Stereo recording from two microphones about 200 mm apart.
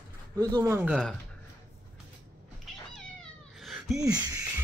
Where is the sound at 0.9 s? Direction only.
Centre (ahead or behind).